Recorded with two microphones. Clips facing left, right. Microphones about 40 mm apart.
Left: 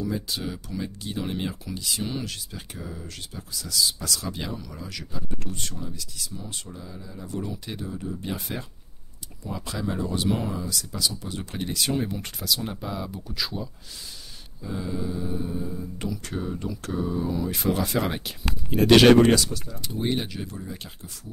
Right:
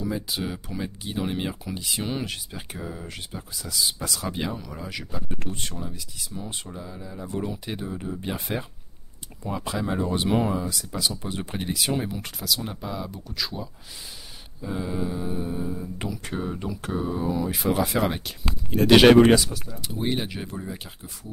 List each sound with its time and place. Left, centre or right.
0.0 s speech: centre
14.6 s speech: centre
18.9 s speech: centre
20.2 s speech: right
20.7 s speech: centre